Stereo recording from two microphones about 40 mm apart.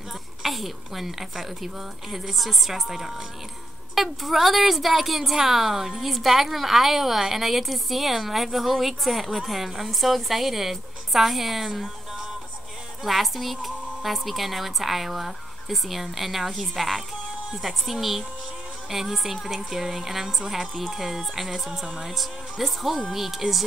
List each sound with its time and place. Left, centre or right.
0.4 s a woman's voice: centre
13.0 s a woman's voice: centre
21.8 s speech: right
22.1 s a woman's voice: centre